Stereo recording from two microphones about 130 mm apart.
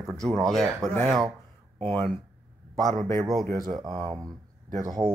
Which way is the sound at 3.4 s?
30° right (ahead or behind).